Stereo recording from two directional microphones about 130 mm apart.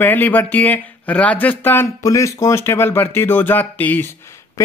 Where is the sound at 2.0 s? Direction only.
25° left (ahead or behind).